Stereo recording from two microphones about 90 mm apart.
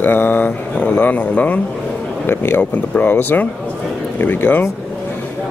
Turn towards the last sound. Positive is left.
turn(degrees=20)  # may be behind; listen again after turning